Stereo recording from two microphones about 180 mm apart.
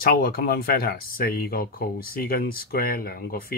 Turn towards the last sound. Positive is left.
turn(degrees=55)  # may be behind; listen again after turning